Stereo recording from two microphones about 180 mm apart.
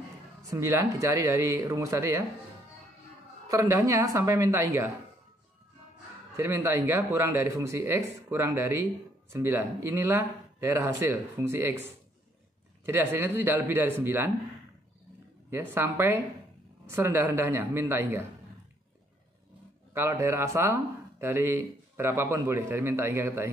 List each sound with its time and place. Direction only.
0.5 s speech: 20° right (ahead or behind)
3.4 s speech: 15° right (ahead or behind)
6.3 s speech: 15° right (ahead or behind)
12.8 s speech: 10° right (ahead or behind)
15.7 s speech: 10° right (ahead or behind)
19.9 s speech: 15° right (ahead or behind)